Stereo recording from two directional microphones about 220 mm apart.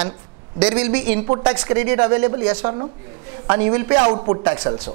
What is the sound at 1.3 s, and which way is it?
A man's voice, 20° right (ahead or behind).